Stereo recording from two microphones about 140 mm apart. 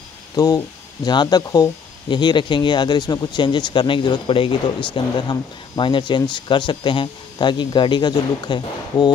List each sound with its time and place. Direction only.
0.4 s speech: 25° left (ahead or behind)